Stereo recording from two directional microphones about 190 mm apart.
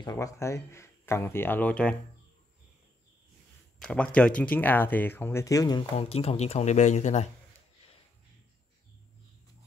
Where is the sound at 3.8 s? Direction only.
5° left (ahead or behind); by 7.2 s 40° left (ahead or behind).